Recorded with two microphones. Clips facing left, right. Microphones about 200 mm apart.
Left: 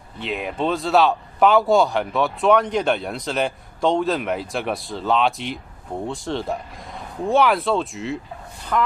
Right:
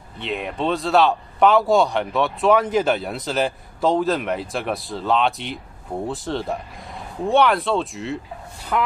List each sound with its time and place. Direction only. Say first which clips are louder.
0.2 s speech: even; centre (ahead or behind)